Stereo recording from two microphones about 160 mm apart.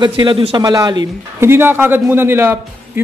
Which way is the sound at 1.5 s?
15° right (ahead or behind).